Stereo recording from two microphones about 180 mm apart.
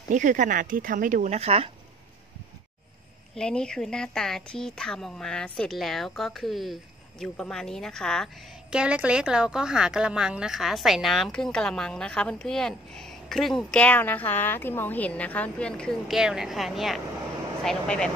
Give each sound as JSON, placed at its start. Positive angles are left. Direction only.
{"t": 0.1, "sound": "speech", "side_deg": -45}
{"t": 3.3, "sound": "a woman's voice", "side_deg": 5}